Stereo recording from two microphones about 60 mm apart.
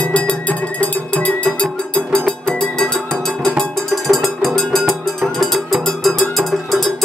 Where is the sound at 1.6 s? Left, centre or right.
Left.